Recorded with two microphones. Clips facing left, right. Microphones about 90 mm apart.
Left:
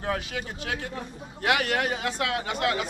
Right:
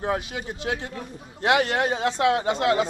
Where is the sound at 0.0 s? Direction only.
20° right (ahead or behind).